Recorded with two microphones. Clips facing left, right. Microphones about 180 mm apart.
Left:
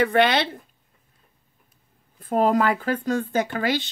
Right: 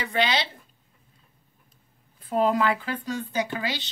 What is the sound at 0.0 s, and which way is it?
Speech, 55° left (ahead or behind).